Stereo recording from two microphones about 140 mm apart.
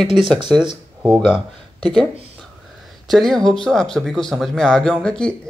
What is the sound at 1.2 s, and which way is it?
Speech, 35° right (ahead or behind).